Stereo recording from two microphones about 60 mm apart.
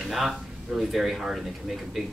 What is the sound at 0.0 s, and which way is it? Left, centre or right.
Speech, centre.